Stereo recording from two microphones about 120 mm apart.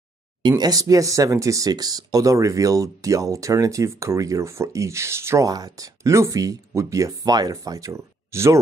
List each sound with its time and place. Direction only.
0.4 s speech: 35° right (ahead or behind)